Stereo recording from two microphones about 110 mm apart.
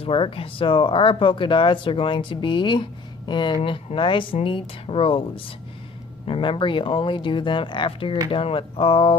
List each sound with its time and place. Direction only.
0.0 s speech: 55° left (ahead or behind)